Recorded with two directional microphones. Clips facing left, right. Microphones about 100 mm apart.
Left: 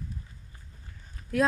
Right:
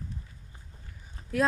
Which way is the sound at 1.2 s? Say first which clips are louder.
Right 1 dB; 30° right (ahead or behind).